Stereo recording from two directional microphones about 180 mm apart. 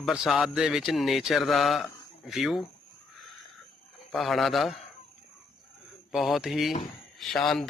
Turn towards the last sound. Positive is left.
turn(degrees=0)  # may be behind; listen again after turning